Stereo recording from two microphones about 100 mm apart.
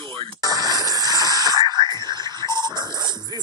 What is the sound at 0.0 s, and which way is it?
Music, 55° right (ahead or behind).